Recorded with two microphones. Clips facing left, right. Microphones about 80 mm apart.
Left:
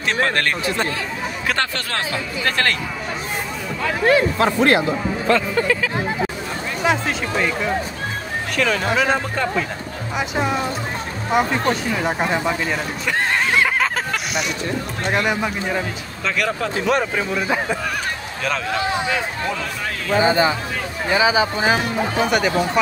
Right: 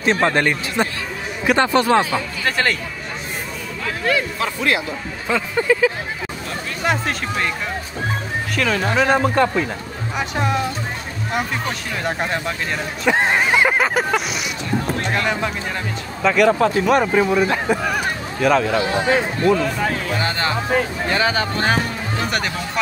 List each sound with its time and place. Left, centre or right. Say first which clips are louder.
0.0 s speech: right 3 dB; right; by 2.8 s centre
4.0 s speech: left 5 dB; left
4.5 s speech: left 5 dB; left
5.2 s speech: left 1 dB; centre
6.8 s speech: left 1 dB; centre
8.5 s speech: even; centre
11.9 s speech: left 2 dB; centre
13.0 s a sound: right 5 dB; centre
15.0 s speech: left 5 dB; centre
16.2 s speech: right 8 dB; centre
20.2 s speech: left 5 dB; centre